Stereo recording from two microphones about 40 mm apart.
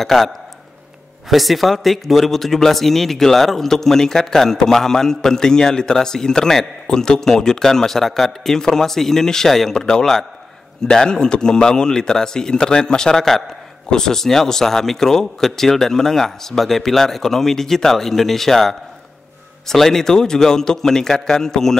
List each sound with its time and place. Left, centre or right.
0.0 s a man's voice: centre
1.3 s speech: centre